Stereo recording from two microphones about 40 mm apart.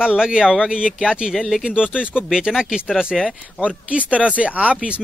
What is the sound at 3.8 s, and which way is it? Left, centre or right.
Speech, right.